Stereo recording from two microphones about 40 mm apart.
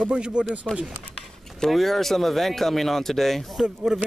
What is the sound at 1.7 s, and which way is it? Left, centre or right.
Speech, centre.